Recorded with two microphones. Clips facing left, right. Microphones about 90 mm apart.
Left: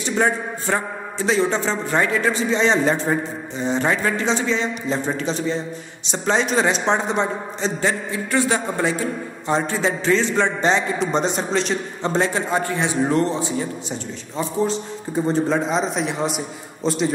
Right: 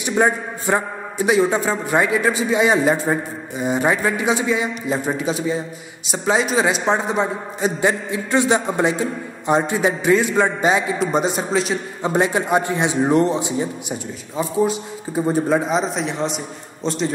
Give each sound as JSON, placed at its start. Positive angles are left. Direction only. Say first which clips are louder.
{"t": 0.0, "sound": "a man's voice", "louder": "right 2 dB", "side_deg": -15}
{"t": 7.8, "sound": "a man's voice", "louder": "right 3 dB", "side_deg": -20}